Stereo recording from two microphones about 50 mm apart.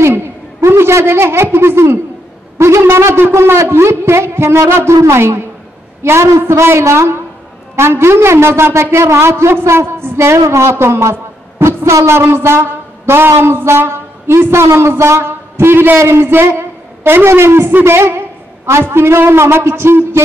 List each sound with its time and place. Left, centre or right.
0.1 s a sound: right
2.6 s a man's voice: right
3.2 s a man's voice: right
6.5 s a man's voice: right
12.2 s a man's voice: right